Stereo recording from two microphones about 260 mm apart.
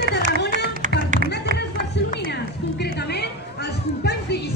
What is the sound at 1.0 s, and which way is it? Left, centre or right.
Music, right.